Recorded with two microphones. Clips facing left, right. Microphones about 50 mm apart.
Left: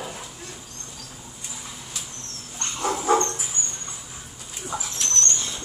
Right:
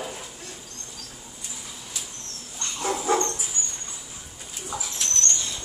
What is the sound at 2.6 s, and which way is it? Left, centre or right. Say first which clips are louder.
Dog: left 2 dB; left.